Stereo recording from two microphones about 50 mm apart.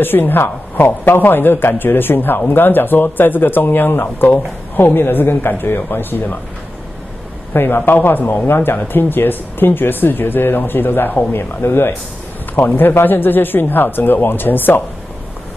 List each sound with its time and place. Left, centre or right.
0.0 s speech: left
7.5 s speech: left